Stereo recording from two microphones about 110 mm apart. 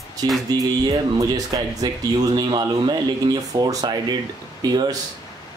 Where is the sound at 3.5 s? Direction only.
35° right (ahead or behind).